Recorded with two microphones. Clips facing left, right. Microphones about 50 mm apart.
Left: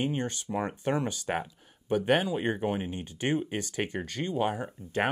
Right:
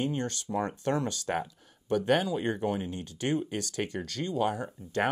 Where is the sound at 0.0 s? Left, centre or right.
Centre.